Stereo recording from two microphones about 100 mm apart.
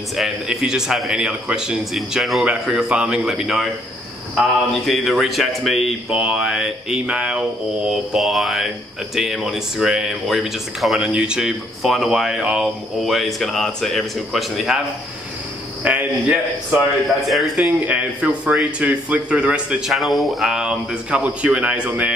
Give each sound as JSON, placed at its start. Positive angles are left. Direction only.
{"t": 0.1, "sound": "speech", "side_deg": -5}
{"t": 15.8, "sound": "speech", "side_deg": -15}
{"t": 17.3, "sound": "speech", "side_deg": 0}
{"t": 17.6, "sound": "a man's voice", "side_deg": -15}
{"t": 19.9, "sound": "a man's voice", "side_deg": 0}